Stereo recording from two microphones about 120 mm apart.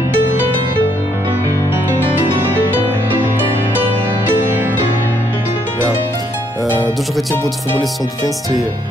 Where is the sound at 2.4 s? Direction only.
20° right (ahead or behind).